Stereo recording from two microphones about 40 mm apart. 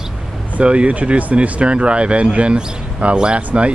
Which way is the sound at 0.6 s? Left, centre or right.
Right.